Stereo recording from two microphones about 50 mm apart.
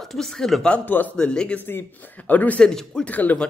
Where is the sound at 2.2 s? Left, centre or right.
Left.